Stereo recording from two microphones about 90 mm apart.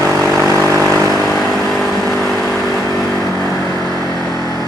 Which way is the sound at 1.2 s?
Centre (ahead or behind).